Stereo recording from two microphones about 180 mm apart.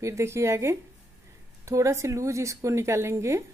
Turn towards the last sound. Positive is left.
turn(degrees=-15)  # may be behind; listen again after turning